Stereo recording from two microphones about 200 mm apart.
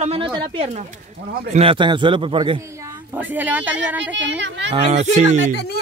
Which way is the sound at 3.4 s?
10° right (ahead or behind).